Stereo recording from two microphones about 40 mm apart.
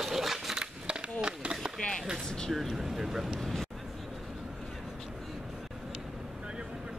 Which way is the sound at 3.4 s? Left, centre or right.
Centre.